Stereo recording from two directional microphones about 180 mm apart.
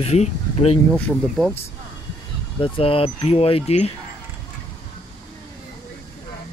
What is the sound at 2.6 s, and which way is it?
Speech, 30° left (ahead or behind).